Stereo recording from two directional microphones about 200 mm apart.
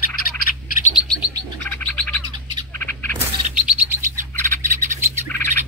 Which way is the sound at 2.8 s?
10° left (ahead or behind).